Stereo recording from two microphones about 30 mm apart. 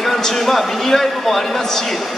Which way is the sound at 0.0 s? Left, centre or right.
Centre.